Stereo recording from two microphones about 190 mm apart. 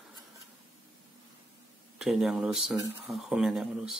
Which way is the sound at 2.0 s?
Centre (ahead or behind).